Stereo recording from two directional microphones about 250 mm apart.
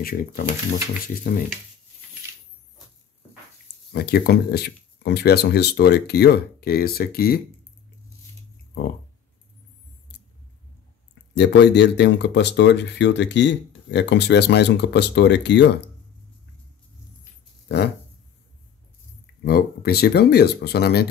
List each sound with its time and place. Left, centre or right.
0.0 s speech: left
3.9 s speech: left
11.3 s speech: left
19.4 s speech: left